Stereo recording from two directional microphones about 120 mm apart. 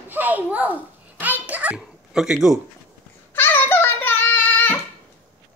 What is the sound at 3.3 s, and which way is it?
Child singing, 15° left (ahead or behind).